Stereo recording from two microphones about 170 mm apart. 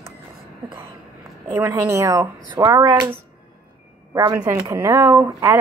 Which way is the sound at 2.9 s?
15° right (ahead or behind).